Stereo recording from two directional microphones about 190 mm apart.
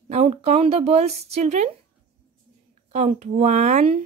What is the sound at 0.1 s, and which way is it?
Speech, 35° right (ahead or behind).